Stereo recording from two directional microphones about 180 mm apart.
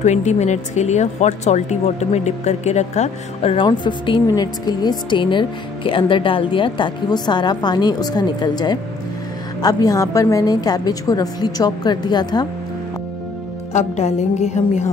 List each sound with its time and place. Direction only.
0.0 s speech: 40° left (ahead or behind); by 12.4 s 25° left (ahead or behind)
13.7 s a woman's voice: 40° left (ahead or behind)